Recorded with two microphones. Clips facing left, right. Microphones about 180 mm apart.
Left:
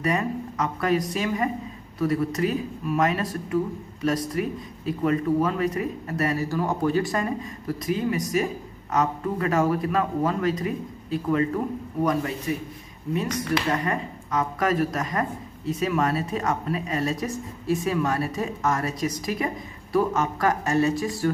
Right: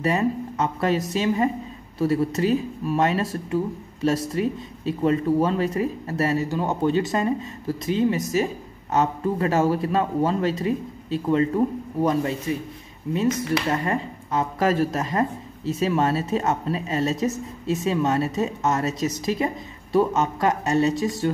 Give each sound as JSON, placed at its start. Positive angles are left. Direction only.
{"t": 0.0, "sound": "speech", "side_deg": -25}
{"t": 13.7, "sound": "speech", "side_deg": -25}